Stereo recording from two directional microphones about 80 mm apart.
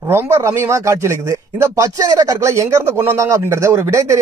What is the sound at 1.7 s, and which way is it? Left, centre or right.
Speech, right.